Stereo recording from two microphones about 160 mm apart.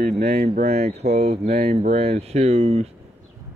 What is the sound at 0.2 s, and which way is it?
Speech, 45° right (ahead or behind).